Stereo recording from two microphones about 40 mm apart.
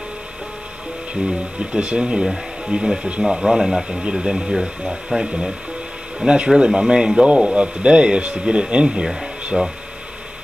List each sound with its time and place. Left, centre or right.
1.2 s speech: right
9.0 s speech: centre
9.5 s speech: centre